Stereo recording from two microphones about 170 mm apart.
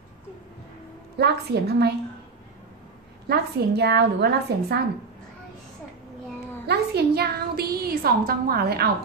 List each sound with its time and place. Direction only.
1.1 s a woman's voice: 75° right (ahead or behind)
3.3 s a woman's voice: 75° right (ahead or behind)
6.7 s a woman's voice: 70° right (ahead or behind)